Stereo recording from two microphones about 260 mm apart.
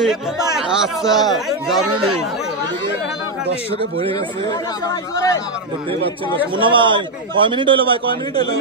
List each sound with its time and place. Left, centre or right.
0.6 s speech: centre
4.8 s speech: centre
6.3 s a man's voice: centre